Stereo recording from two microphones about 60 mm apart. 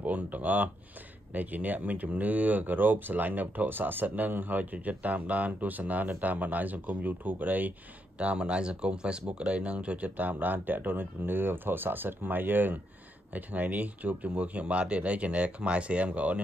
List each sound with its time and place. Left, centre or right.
0.0 s speech: right